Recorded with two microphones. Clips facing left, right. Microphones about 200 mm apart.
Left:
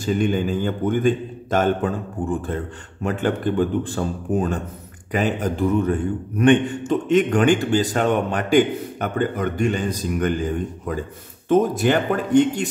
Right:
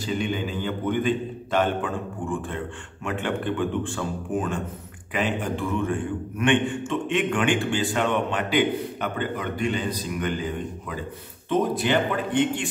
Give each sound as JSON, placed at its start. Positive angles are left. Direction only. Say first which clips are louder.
{"t": 0.0, "sound": "a man's voice", "louder": "left 6 dB", "side_deg": 45}